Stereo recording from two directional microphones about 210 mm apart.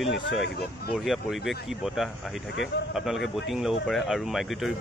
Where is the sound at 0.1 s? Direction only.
55° left (ahead or behind).